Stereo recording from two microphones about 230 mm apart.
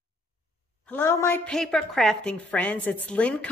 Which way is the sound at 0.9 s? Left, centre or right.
Centre.